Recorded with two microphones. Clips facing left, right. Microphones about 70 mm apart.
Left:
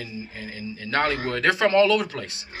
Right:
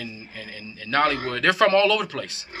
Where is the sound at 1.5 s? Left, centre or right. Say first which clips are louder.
Right 1 dB; centre.